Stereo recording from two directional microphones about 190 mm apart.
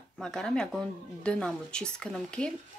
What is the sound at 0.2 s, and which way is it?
A woman's voice, 5° left (ahead or behind).